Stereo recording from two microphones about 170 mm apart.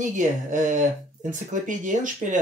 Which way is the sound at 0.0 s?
50° right (ahead or behind).